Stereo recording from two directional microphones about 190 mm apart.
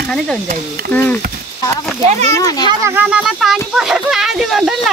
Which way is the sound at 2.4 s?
20° left (ahead or behind).